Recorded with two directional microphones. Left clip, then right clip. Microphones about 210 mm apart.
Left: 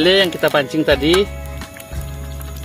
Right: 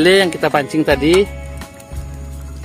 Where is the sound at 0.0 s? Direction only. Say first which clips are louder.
Right 2 dB; 35° right (ahead or behind).